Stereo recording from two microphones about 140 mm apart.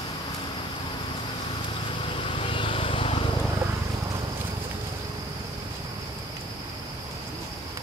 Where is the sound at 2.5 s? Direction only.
40° left (ahead or behind).